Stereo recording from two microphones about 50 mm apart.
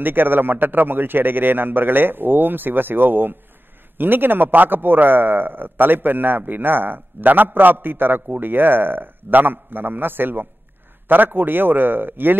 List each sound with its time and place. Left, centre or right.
0.0 s a man's voice: right